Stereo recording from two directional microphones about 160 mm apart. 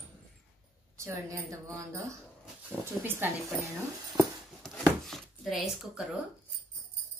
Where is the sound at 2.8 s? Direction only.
15° right (ahead or behind).